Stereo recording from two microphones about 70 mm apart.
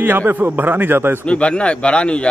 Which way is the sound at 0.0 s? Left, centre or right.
Right.